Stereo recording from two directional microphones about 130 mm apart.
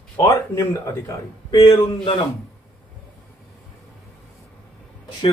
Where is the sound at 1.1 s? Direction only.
30° left (ahead or behind).